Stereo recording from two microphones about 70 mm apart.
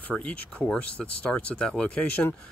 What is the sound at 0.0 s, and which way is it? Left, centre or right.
Speech, centre.